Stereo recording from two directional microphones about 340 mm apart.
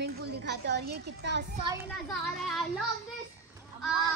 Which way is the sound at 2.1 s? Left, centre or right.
Centre.